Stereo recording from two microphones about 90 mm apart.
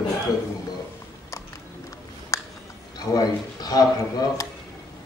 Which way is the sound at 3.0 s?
45° left (ahead or behind).